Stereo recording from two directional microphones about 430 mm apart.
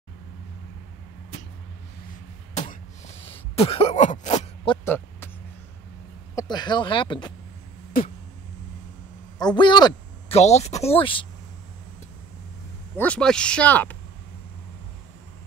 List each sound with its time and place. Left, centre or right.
2.5 s a sound: centre
4.8 s vehicle: centre
6.3 s speech: centre
8.0 s a sound: centre
9.4 s speech: centre
12.9 s speech: centre